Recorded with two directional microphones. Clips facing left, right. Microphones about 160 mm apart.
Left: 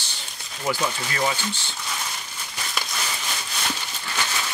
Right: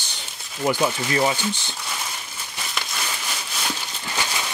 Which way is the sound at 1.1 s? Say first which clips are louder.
Right 4 dB; 20° right (ahead or behind).